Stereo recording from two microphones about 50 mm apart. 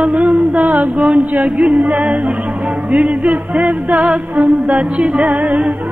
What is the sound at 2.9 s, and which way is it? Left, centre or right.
Music, right.